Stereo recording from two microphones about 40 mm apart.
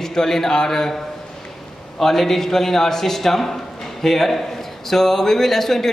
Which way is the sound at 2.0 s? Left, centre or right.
Centre.